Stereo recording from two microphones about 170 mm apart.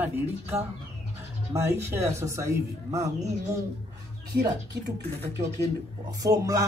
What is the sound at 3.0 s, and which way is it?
Speech, 40° right (ahead or behind).